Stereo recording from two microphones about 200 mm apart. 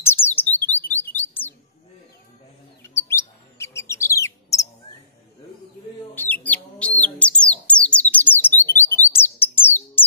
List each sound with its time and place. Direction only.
0.0 s bird: 10° left (ahead or behind)
2.8 s bird: 15° left (ahead or behind)
6.1 s bird: 10° left (ahead or behind)